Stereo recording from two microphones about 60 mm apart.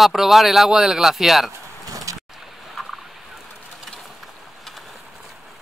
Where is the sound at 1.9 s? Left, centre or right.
Right.